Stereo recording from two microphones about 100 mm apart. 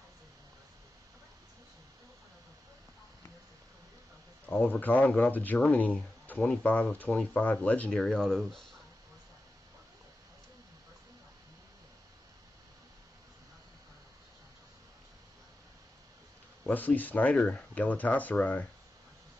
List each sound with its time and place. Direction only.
4.5 s speech: 15° left (ahead or behind)
16.6 s speech: 15° left (ahead or behind)